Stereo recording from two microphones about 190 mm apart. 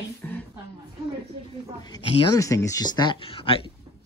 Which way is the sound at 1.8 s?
25° left (ahead or behind).